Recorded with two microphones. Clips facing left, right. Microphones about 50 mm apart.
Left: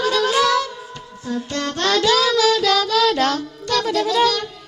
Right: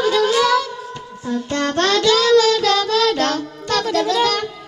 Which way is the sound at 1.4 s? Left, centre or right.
Right.